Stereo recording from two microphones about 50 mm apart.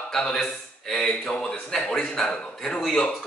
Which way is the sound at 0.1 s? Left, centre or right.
Centre.